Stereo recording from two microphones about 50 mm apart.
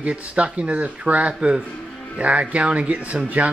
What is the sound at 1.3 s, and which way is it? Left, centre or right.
Speech, centre.